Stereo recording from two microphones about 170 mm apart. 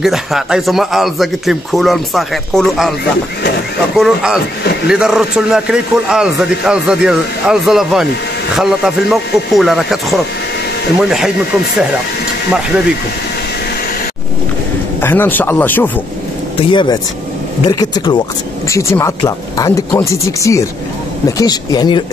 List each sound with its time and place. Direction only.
0.0 s a man's voice: centre (ahead or behind)
3.9 s a man's voice: centre (ahead or behind)
15.0 s speech: 10° left (ahead or behind)
16.7 s speech: 25° left (ahead or behind)